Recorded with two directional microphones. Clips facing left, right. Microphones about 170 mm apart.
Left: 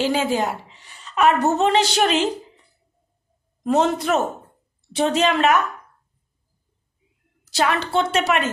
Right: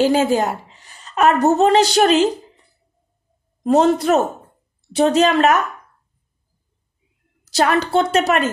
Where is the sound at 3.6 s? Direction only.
35° right (ahead or behind).